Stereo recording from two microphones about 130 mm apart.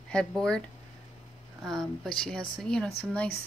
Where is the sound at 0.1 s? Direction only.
5° left (ahead or behind).